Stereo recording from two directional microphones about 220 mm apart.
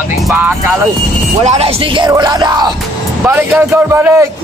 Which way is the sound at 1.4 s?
30° right (ahead or behind).